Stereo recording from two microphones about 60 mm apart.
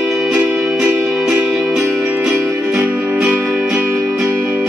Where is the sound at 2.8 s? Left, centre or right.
Right.